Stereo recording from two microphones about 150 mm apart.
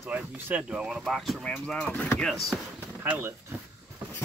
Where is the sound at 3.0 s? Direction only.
15° right (ahead or behind).